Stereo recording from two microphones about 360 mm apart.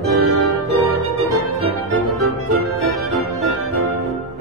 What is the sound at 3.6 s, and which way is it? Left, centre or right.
Organ, right.